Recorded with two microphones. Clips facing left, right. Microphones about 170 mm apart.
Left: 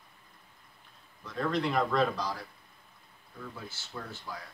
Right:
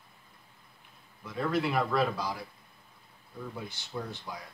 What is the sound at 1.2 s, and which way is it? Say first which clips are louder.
A man's voice: right 1 dB; 10° right (ahead or behind).